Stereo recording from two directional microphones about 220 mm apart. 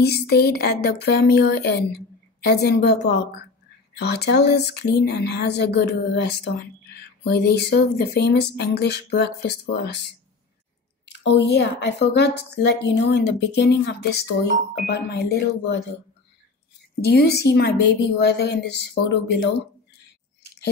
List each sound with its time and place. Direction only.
0.0 s speech: 45° left (ahead or behind)
11.2 s speech: 50° left (ahead or behind)
17.0 s speech: 45° left (ahead or behind)